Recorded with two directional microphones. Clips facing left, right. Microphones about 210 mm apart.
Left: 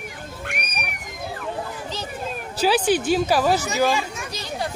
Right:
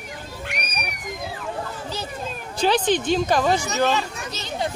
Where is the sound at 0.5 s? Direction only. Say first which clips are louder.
Right 1 dB; 50° left (ahead or behind).